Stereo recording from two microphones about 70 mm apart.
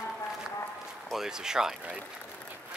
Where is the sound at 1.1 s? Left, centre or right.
Centre.